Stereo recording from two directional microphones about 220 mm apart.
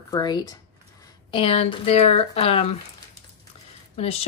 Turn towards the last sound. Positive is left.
turn(degrees=25)  # may be behind; listen again after turning